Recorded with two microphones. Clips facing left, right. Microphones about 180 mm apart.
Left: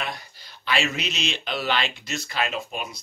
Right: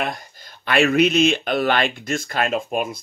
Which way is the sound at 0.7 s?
55° right (ahead or behind).